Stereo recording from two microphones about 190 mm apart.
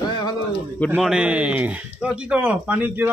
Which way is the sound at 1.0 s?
5° right (ahead or behind).